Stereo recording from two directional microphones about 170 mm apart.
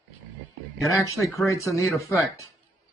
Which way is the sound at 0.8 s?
20° left (ahead or behind).